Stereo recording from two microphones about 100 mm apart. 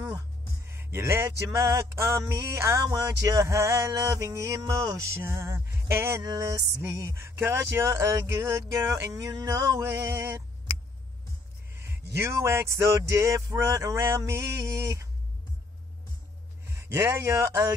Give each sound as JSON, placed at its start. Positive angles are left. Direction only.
{"t": 0.7, "sound": "music", "side_deg": -25}
{"t": 11.7, "sound": "music", "side_deg": -25}
{"t": 16.6, "sound": "speech", "side_deg": -25}